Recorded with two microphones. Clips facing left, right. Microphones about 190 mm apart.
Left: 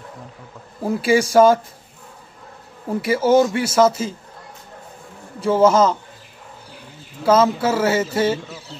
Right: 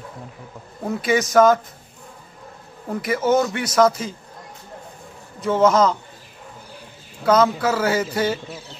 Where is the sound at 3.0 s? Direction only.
30° left (ahead or behind).